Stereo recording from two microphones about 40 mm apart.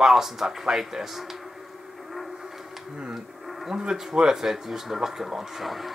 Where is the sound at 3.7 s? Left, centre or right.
Centre.